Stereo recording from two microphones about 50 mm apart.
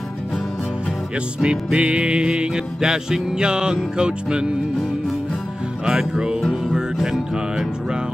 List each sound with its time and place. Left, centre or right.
1.1 s music: centre
5.9 s music: centre